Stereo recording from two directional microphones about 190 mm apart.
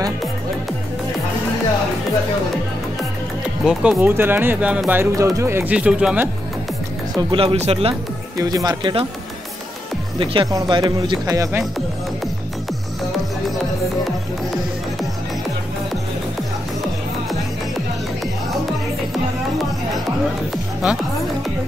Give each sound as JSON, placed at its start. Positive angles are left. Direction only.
{"t": 3.6, "sound": "speech", "side_deg": -5}
{"t": 7.2, "sound": "speech", "side_deg": -25}
{"t": 8.4, "sound": "speech", "side_deg": -20}
{"t": 10.1, "sound": "speech", "side_deg": -25}